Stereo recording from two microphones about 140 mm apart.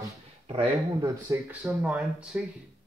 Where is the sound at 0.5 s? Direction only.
45° right (ahead or behind).